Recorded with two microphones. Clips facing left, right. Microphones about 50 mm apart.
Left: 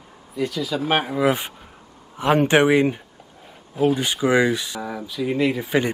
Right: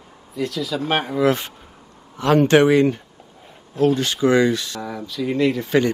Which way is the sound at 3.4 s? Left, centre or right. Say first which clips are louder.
Right 2 dB; centre.